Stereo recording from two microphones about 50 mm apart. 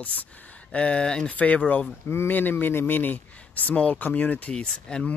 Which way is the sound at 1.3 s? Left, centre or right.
Left.